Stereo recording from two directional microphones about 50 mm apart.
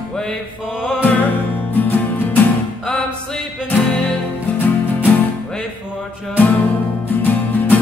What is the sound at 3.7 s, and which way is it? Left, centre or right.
Music, left.